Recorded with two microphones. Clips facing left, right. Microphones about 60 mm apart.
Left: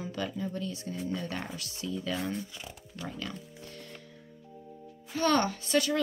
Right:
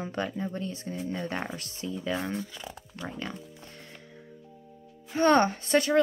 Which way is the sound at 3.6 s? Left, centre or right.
Right.